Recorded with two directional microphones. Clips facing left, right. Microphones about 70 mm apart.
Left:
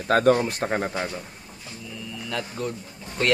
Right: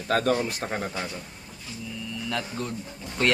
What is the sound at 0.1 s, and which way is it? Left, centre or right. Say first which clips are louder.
Speech: left 5 dB; left.